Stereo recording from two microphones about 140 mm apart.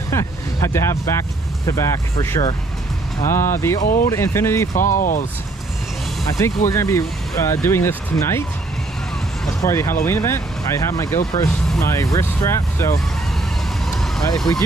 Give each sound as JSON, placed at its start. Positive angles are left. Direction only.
{"t": 0.1, "sound": "speech", "side_deg": 20}
{"t": 3.8, "sound": "speech", "side_deg": 75}
{"t": 4.1, "sound": "speech", "side_deg": 20}
{"t": 4.8, "sound": "speech", "side_deg": 70}
{"t": 6.3, "sound": "speech", "side_deg": 20}
{"t": 9.6, "sound": "speech", "side_deg": 20}